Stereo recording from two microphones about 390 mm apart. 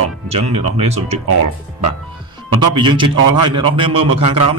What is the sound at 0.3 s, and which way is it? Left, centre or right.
Speech, centre.